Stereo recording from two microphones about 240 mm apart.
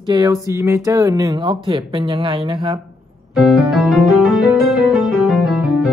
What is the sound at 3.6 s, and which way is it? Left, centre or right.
Music, centre.